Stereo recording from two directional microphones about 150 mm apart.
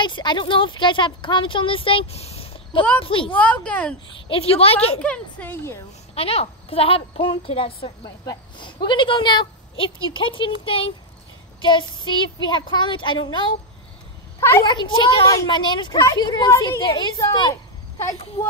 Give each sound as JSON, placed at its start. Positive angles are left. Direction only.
{"t": 0.0, "sound": "speech", "side_deg": 30}
{"t": 3.3, "sound": "speech", "side_deg": 10}
{"t": 4.3, "sound": "speech", "side_deg": 40}
{"t": 5.0, "sound": "speech", "side_deg": 10}
{"t": 6.1, "sound": "speech", "side_deg": 40}
{"t": 14.6, "sound": "speech", "side_deg": 30}